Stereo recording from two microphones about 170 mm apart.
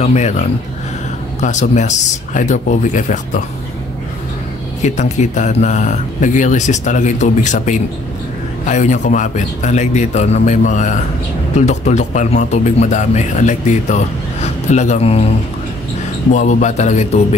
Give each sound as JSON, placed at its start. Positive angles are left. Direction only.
{"t": 0.0, "sound": "speech", "side_deg": 40}
{"t": 4.8, "sound": "speech", "side_deg": 45}
{"t": 16.3, "sound": "speech", "side_deg": 45}